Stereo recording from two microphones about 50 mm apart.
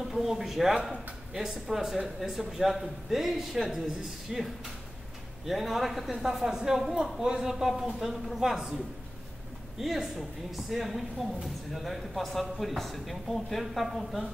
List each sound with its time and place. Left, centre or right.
0.1 s speech: centre
5.5 s a man's voice: centre
9.8 s speech: centre